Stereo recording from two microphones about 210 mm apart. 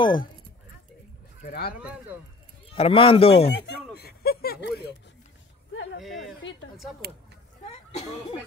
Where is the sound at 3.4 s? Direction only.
50° left (ahead or behind).